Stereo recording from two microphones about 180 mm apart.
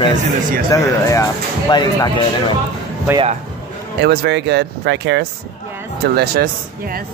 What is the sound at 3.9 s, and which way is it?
Speech, 70° right (ahead or behind).